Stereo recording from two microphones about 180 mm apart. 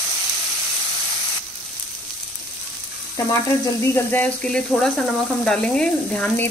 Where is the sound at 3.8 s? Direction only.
10° left (ahead or behind).